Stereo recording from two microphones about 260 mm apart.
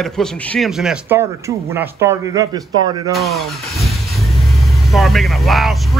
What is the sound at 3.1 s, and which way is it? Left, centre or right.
A man's voice, centre.